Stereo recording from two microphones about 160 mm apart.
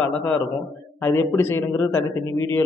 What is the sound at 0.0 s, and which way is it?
A man's voice, 10° left (ahead or behind).